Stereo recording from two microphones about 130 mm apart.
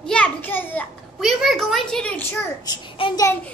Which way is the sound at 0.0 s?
10° left (ahead or behind).